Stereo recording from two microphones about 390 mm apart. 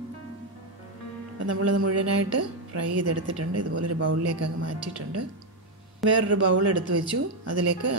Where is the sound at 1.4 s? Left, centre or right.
Right.